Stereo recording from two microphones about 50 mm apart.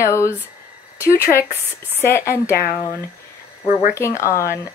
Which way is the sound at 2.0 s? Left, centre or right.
Left.